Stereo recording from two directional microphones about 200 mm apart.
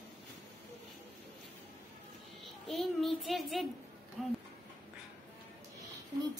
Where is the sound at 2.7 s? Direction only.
Centre (ahead or behind).